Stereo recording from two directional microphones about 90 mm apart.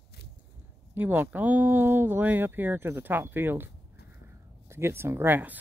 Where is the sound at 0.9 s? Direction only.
20° right (ahead or behind).